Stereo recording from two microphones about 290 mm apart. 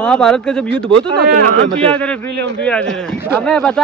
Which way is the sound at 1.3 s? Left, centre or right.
Right.